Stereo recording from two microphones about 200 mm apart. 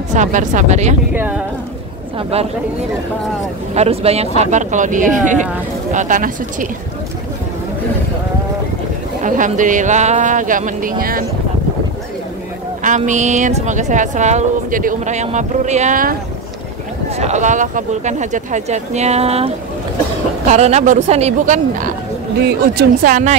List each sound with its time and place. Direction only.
0.1 s a woman's voice: 40° right (ahead or behind)
1.1 s speech: 10° right (ahead or behind)
2.3 s a woman's voice: 30° right (ahead or behind)
3.7 s a woman's voice: 30° right (ahead or behind)
9.2 s a woman's voice: 40° right (ahead or behind)
12.8 s a woman's voice: 40° right (ahead or behind)
17.2 s a woman's voice: 35° right (ahead or behind)